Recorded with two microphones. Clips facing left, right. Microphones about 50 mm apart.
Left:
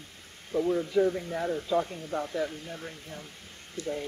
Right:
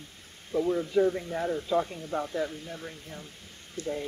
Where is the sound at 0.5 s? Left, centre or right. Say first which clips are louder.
Even; left.